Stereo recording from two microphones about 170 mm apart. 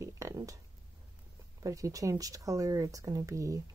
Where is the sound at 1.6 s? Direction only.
20° right (ahead or behind).